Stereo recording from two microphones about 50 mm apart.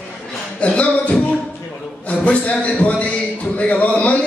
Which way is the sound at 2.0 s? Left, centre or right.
Left.